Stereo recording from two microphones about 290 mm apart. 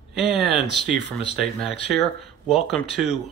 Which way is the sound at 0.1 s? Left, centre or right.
Centre.